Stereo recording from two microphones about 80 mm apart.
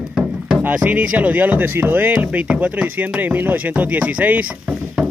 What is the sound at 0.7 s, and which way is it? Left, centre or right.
Speech, centre.